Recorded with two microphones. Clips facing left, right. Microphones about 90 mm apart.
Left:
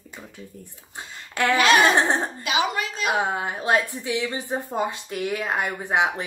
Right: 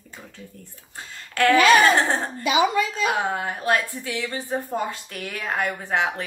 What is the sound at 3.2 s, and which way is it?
A woman's voice, 15° left (ahead or behind).